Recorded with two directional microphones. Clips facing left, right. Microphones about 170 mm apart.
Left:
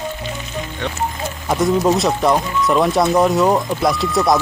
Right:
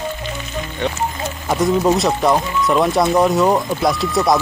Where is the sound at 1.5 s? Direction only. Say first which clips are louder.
Even; centre (ahead or behind).